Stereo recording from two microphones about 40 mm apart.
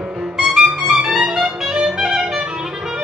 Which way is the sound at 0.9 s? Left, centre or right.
Centre.